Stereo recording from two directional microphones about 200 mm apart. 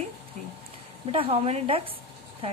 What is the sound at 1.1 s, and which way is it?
Speech, 30° right (ahead or behind).